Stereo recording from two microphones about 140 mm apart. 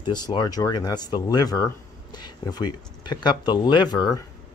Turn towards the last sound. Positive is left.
turn(degrees=30)  # may be behind; listen again after turning